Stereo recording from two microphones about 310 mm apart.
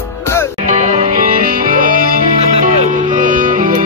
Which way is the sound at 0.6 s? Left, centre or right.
Right.